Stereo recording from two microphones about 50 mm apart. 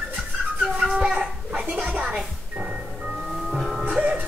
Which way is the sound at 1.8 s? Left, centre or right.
Right.